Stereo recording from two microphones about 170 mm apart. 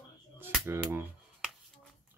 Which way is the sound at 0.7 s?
15° right (ahead or behind).